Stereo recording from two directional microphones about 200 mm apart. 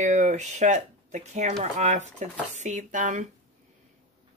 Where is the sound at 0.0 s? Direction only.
35° right (ahead or behind).